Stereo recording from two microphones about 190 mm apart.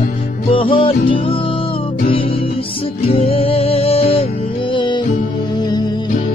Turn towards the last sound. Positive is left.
turn(degrees=20)  # may be behind; listen again after turning